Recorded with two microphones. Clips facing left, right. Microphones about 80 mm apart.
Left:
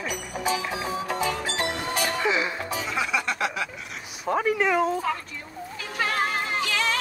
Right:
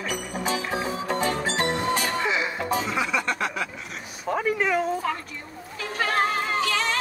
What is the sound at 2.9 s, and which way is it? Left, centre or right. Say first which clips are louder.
Music: right 1 dB; centre.